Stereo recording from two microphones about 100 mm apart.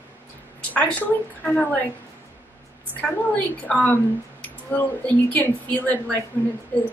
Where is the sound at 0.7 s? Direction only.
15° left (ahead or behind).